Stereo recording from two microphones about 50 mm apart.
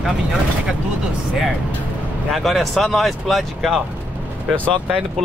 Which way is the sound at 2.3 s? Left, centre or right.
Centre.